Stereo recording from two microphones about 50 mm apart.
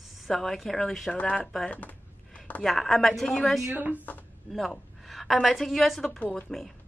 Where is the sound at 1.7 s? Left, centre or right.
Left.